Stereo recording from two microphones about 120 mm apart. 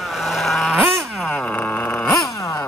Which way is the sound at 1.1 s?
5° left (ahead or behind).